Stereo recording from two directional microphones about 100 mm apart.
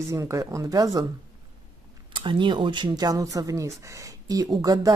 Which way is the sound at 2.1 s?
55° right (ahead or behind).